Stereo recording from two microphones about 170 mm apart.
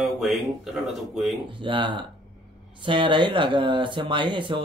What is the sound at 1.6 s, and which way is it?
Speech, 30° right (ahead or behind).